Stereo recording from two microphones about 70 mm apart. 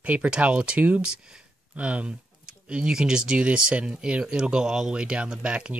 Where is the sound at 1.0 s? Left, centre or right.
Centre.